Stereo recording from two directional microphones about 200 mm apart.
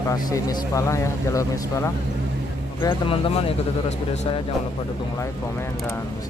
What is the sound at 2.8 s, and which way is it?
Speech, 25° left (ahead or behind).